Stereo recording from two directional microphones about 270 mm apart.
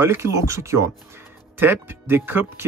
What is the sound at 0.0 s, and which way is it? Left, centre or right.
Speech, centre.